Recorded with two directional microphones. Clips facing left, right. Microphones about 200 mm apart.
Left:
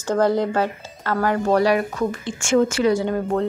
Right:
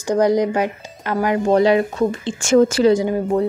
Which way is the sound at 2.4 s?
35° right (ahead or behind).